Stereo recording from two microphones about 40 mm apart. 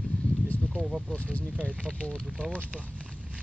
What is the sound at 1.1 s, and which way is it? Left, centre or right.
Speech, left.